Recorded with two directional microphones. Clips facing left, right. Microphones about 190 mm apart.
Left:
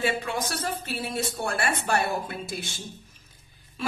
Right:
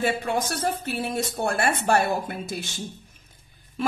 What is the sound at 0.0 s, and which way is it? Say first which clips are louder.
Speech: right 3 dB; 50° right (ahead or behind).